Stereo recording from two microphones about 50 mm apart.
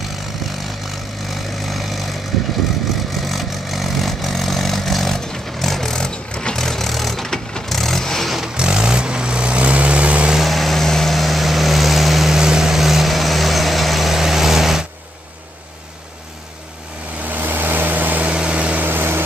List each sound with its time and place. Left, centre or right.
1.3 s vehicle: centre
3.3 s vehicle: centre
8.4 s vehicle: centre
10.4 s vehicle: centre
17.2 s vehicle: right
18.3 s vehicle: centre
18.8 s vehicle: right